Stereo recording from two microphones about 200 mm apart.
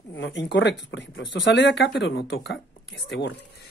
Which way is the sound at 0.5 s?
60° left (ahead or behind).